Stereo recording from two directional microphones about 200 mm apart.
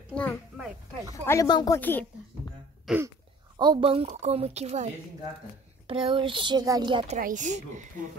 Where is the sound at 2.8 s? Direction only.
10° right (ahead or behind).